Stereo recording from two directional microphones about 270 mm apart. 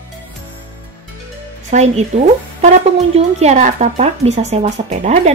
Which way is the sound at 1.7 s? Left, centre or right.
Right.